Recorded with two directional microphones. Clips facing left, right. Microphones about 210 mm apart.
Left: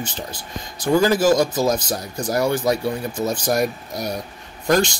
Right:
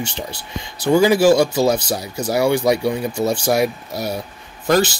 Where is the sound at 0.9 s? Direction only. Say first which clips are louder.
Right 3 dB; 10° right (ahead or behind).